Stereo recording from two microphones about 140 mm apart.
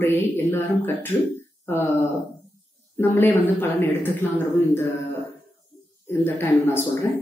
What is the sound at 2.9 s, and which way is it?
Speech, 15° left (ahead or behind).